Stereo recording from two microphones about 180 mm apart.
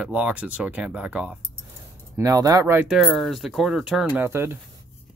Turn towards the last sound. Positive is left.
turn(degrees=-15)  # may be behind; listen again after turning